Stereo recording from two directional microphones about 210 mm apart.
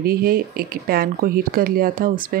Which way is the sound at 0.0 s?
45° right (ahead or behind).